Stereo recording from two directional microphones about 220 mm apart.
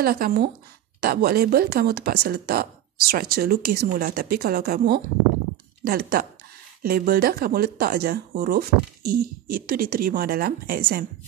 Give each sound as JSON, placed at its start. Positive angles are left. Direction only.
{"t": 0.0, "sound": "speech", "side_deg": -45}